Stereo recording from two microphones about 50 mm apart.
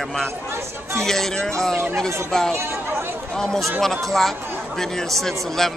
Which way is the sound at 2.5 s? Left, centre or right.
Right.